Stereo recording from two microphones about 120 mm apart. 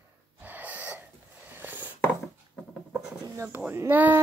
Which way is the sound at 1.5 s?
15° right (ahead or behind).